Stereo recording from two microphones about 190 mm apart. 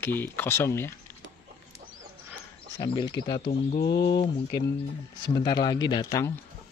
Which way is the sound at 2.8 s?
20° left (ahead or behind).